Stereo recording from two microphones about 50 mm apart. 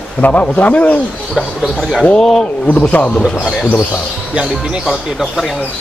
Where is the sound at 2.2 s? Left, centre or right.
Centre.